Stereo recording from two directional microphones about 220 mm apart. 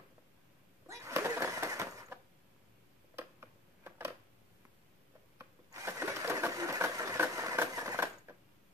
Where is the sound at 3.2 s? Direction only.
10° right (ahead or behind).